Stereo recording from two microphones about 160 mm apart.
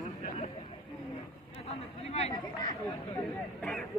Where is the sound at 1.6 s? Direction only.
40° left (ahead or behind).